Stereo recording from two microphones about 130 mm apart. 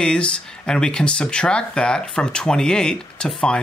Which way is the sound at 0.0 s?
5° left (ahead or behind).